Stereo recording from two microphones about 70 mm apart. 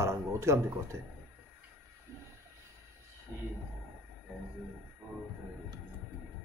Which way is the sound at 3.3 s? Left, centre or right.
Right.